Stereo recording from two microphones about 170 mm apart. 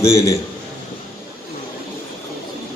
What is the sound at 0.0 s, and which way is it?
Speech, 15° left (ahead or behind).